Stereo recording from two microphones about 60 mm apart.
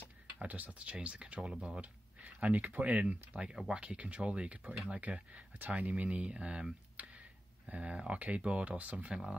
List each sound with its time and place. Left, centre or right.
0.4 s speech: right
1.8 s speech: right
9.1 s speech: centre